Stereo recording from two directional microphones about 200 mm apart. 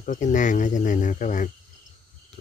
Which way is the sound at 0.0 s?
40° left (ahead or behind).